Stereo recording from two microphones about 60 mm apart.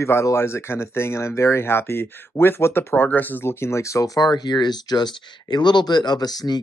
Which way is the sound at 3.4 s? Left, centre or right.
Left.